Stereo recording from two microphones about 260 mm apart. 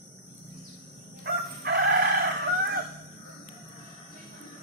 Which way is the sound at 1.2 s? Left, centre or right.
Right.